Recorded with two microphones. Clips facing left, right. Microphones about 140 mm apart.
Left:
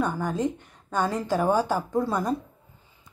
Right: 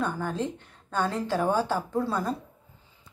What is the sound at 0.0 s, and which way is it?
A woman's voice, 15° left (ahead or behind).